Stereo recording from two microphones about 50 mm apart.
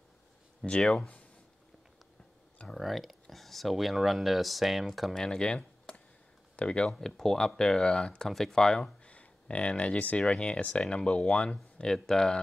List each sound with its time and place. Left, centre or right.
0.7 s speech: centre
2.7 s speech: centre
5.1 s speech: centre
6.9 s speech: centre
8.3 s speech: centre
9.0 s speech: left; by 12.4 s centre